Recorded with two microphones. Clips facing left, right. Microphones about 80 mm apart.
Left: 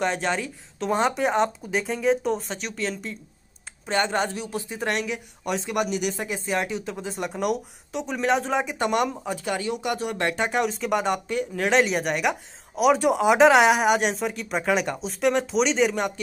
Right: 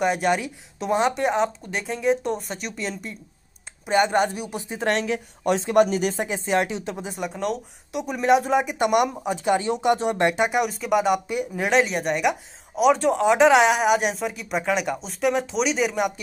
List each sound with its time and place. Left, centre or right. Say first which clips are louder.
0.0 s speech: right 3 dB; centre
3.8 s a woman's voice: right 4 dB; centre; by 6.2 s right
6.2 s a woman's voice: right 4 dB; right
7.2 s speech: left 2 dB; centre
7.9 s speech: right 4 dB; centre